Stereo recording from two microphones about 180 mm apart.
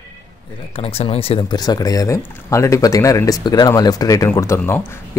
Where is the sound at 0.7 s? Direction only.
30° left (ahead or behind).